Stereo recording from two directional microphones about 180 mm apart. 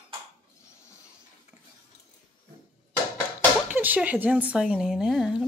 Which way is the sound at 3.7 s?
10° right (ahead or behind).